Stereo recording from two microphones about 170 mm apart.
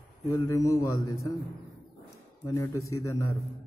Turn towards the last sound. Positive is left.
turn(degrees=15)  # may be behind; listen again after turning